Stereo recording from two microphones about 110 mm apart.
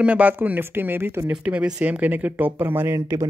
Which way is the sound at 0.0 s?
15° right (ahead or behind).